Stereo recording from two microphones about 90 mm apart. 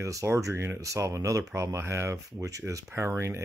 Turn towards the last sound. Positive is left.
turn(degrees=-35)  # may be behind; listen again after turning